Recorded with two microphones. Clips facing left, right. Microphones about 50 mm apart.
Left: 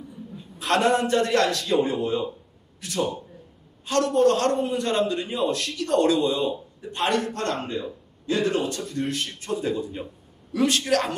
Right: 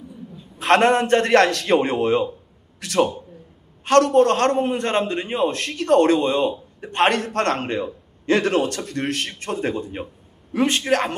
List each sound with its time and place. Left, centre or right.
0.6 s a man's voice: right
3.8 s a man's voice: right
10.5 s speech: right